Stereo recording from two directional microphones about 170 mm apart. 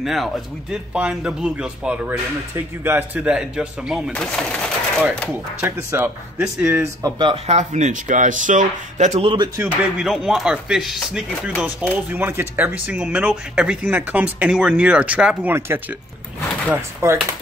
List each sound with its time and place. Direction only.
0.0 s speech: centre (ahead or behind)
4.1 s speech: 5° left (ahead or behind)
5.6 s speech: 15° right (ahead or behind)
6.4 s chopping: 5° right (ahead or behind)
6.8 s speech: 20° right (ahead or behind)
7.4 s speech: 45° right (ahead or behind)
9.6 s chopping: 5° right (ahead or behind)
11.9 s speech: 10° right (ahead or behind)